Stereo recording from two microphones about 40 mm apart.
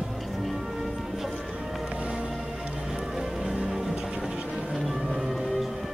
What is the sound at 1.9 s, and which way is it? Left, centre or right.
Music, right.